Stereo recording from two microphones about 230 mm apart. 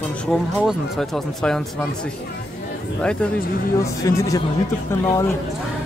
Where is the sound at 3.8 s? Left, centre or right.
Centre.